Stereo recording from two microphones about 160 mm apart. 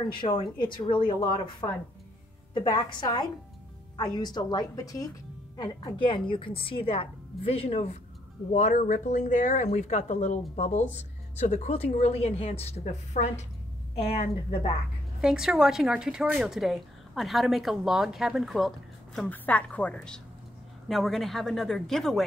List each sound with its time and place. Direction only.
0.1 s a woman's voice: 30° left (ahead or behind)
15.1 s speech: 5° right (ahead or behind)
19.1 s a woman's voice: 10° left (ahead or behind)